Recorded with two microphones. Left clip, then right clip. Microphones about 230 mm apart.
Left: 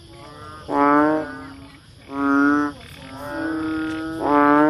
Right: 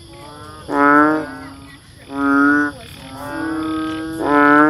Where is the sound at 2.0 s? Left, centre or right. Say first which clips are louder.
Right 4 dB; left.